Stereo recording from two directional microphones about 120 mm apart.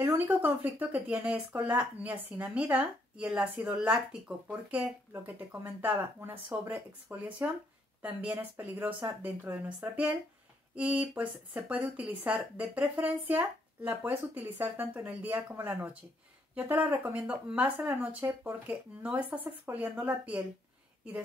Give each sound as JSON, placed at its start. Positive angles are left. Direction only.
{"t": 0.0, "sound": "speech", "side_deg": -15}